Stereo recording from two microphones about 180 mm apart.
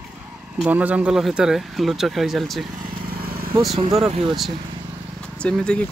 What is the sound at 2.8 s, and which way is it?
Vehicle, 55° right (ahead or behind).